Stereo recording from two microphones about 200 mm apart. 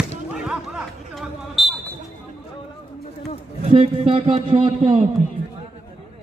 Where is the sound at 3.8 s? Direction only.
30° right (ahead or behind).